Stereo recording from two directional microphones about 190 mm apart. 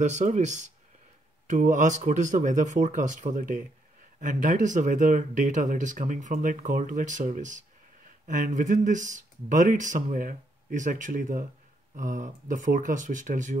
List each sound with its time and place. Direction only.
0.0 s speech: 40° right (ahead or behind)